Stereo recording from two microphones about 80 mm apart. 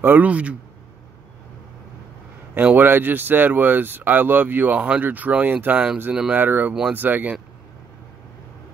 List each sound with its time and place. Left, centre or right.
0.0 s speech: right
2.5 s speech: right